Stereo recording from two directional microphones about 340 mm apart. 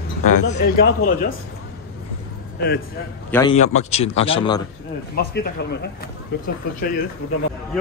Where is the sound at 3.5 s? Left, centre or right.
Centre.